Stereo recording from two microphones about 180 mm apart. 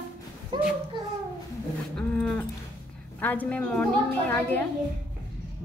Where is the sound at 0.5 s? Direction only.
25° right (ahead or behind).